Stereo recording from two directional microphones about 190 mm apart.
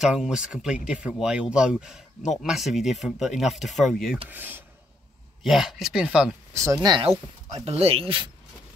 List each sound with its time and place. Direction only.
0.0 s speech: 5° right (ahead or behind)
4.3 s speech: 10° right (ahead or behind)
6.6 s speech: 20° right (ahead or behind)